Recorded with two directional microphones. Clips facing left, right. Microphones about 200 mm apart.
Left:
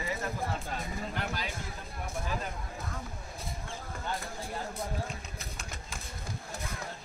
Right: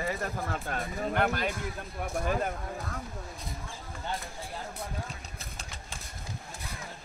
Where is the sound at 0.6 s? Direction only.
60° right (ahead or behind).